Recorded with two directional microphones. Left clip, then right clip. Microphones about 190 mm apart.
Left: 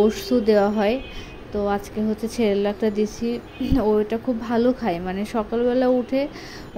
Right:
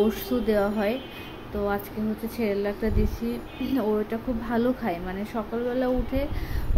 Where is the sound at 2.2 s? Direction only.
25° left (ahead or behind).